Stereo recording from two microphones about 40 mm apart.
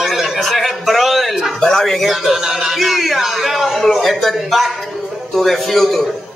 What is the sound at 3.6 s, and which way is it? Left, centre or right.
A man's voice, centre.